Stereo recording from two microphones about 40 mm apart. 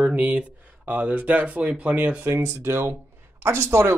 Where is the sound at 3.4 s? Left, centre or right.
Right.